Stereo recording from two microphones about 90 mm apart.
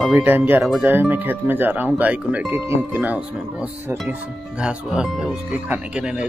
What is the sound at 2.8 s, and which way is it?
Speech, 20° right (ahead or behind).